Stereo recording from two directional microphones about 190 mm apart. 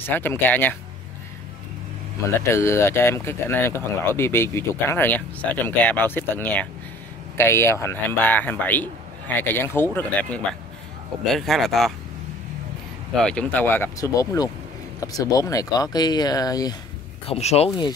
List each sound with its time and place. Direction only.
0.0 s speech: 10° left (ahead or behind)
2.2 s speech: 15° left (ahead or behind)
11.3 s speech: centre (ahead or behind)
13.2 s speech: 5° left (ahead or behind)
17.3 s speech: 35° left (ahead or behind)